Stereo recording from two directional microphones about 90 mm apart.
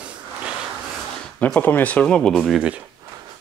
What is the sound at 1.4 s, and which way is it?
Speech, 15° left (ahead or behind).